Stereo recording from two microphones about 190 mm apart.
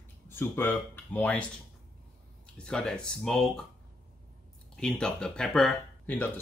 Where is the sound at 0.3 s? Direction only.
10° left (ahead or behind).